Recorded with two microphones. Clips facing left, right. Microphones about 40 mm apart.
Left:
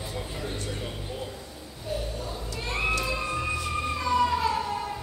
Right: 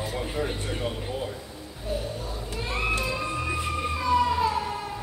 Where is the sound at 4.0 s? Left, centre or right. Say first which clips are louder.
Right 2 dB; centre.